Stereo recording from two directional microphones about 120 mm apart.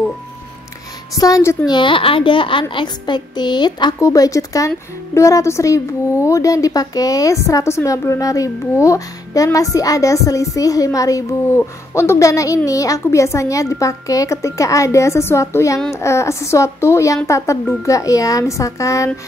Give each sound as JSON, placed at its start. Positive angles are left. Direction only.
{"t": 1.1, "sound": "speech", "side_deg": 30}
{"t": 1.7, "sound": "a child's voice", "side_deg": 45}
{"t": 4.0, "sound": "speech", "side_deg": 30}